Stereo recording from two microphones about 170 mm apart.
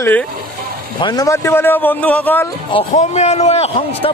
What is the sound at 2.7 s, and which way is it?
A man's voice, 40° left (ahead or behind).